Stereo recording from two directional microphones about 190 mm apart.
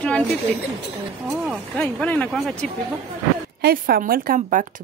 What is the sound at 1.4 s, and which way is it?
Speech, 5° right (ahead or behind).